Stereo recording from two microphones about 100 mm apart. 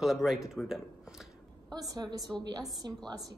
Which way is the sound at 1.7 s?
40° right (ahead or behind).